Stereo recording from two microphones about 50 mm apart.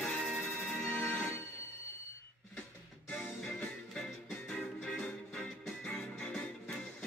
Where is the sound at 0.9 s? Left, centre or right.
Left.